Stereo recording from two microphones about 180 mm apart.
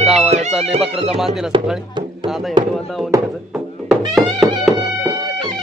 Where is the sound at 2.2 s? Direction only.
Centre (ahead or behind).